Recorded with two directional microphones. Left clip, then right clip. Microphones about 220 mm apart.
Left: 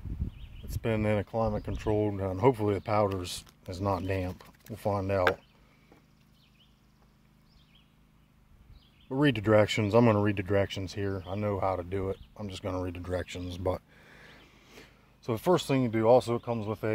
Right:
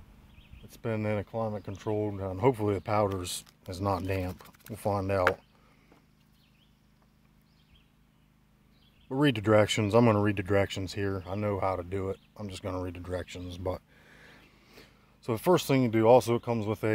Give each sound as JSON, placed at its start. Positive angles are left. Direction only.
{"t": 0.7, "sound": "speech", "side_deg": 5}
{"t": 2.4, "sound": "speech", "side_deg": -5}
{"t": 9.1, "sound": "speech", "side_deg": -10}
{"t": 15.2, "sound": "speech", "side_deg": -15}
{"t": 15.5, "sound": "speech", "side_deg": -30}